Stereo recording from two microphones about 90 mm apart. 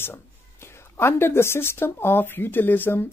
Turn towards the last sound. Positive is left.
turn(degrees=20)  # may be behind; listen again after turning